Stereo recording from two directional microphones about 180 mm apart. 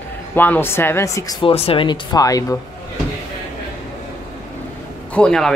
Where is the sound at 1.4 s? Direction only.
30° left (ahead or behind).